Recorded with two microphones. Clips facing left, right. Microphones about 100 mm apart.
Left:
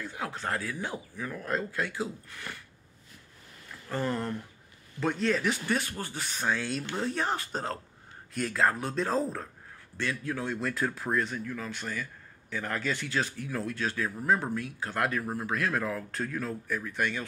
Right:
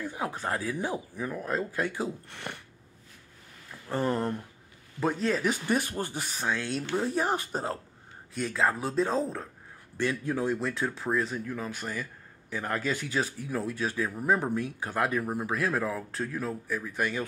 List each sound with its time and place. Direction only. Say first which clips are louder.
0.0 s speech: right 2 dB; 15° right (ahead or behind)
3.9 s speech: right 3 dB; 20° right (ahead or behind)
5.0 s speech: right 1 dB; 10° right (ahead or behind)
6.5 s speech: right 1 dB; 10° left (ahead or behind)
7.0 s speech: right 3 dB; 10° right (ahead or behind)
8.5 s speech: right 1 dB; 5° right (ahead or behind)
9.9 s speech: right 4 dB; 20° right (ahead or behind)
10.6 s speech: even; centre (ahead or behind)
11.4 s speech: right 1 dB; 20° right (ahead or behind)